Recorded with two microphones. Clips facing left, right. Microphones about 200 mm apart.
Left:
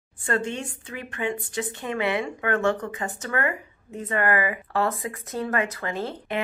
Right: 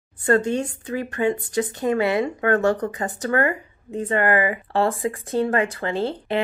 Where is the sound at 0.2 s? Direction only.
40° right (ahead or behind).